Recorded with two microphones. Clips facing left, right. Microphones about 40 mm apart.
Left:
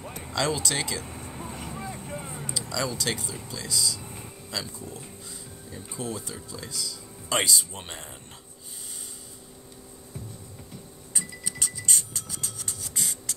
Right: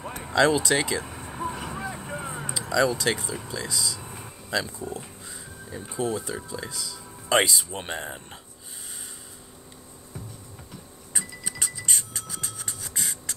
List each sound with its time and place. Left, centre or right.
0.2 s vehicle: right
1.6 s vehicle: right
2.0 s vehicle: right
4.5 s music: right
5.9 s speech: right
11.1 s a sound: centre
11.6 s music: centre